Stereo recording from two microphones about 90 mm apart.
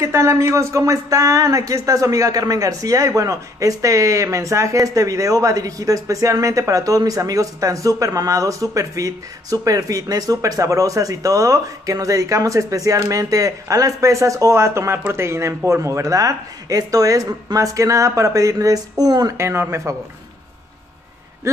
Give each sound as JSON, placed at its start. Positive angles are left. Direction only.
{"t": 0.0, "sound": "speech", "side_deg": -30}